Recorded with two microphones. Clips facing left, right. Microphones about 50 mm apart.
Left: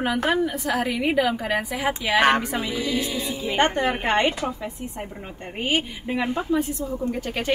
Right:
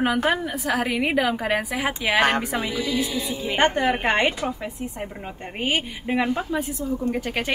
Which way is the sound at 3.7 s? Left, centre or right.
Right.